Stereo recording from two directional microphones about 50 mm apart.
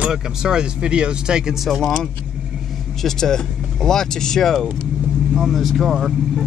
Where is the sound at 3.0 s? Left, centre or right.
Centre.